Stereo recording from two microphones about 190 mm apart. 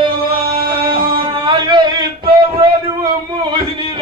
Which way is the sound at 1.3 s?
25° right (ahead or behind).